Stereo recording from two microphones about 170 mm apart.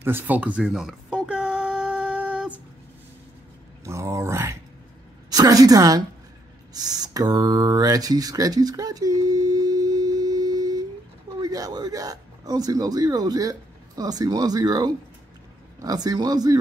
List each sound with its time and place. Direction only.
0.0 s music: 10° right (ahead or behind)
3.8 s a sound: 15° right (ahead or behind)
5.3 s a woman's voice: 20° right (ahead or behind)